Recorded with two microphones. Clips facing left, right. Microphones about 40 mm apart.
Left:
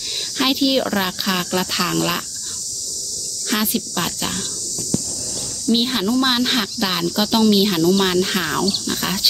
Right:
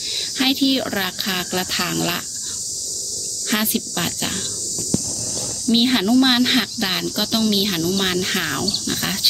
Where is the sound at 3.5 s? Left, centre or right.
Centre.